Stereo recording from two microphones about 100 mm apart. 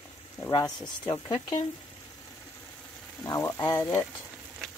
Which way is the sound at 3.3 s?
30° left (ahead or behind).